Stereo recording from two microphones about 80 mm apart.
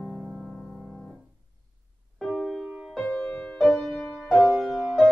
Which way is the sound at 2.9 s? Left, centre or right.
Centre.